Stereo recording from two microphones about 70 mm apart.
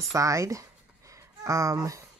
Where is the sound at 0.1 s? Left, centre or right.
Right.